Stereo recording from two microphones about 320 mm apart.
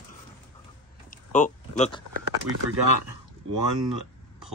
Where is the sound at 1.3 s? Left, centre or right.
Left.